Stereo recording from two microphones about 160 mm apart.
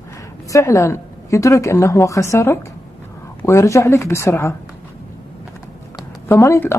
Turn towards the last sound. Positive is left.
turn(degrees=15)  # may be behind; listen again after turning